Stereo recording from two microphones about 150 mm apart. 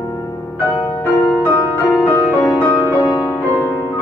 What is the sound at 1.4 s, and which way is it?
Music, 10° left (ahead or behind).